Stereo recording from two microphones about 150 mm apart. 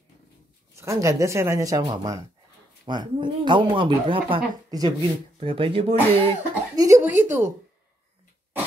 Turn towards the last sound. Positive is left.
turn(degrees=-15)  # may be behind; listen again after turning